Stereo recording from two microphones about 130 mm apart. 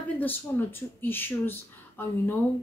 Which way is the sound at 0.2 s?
15° left (ahead or behind).